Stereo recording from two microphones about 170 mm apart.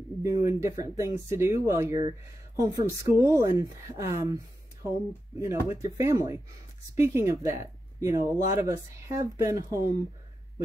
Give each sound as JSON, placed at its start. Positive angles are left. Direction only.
{"t": 0.2, "sound": "a woman's voice", "side_deg": -20}